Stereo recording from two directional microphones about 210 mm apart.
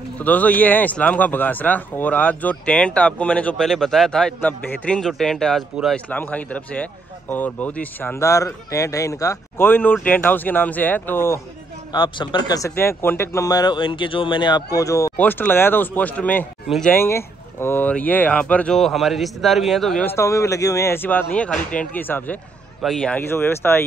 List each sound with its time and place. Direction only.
0.2 s speech: 5° left (ahead or behind)
16.9 s speech: 10° left (ahead or behind)